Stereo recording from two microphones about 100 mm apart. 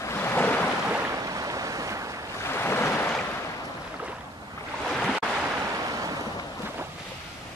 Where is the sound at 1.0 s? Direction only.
35° right (ahead or behind).